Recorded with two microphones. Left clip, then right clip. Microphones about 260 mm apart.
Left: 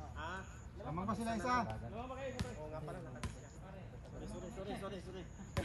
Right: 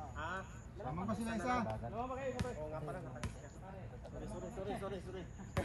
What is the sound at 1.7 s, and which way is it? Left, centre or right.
Speech, centre.